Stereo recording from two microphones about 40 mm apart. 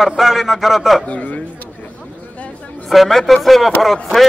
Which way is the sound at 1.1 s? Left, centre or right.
Left.